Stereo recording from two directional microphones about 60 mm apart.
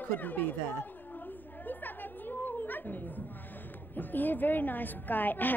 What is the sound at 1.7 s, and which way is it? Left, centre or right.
Chatter, left.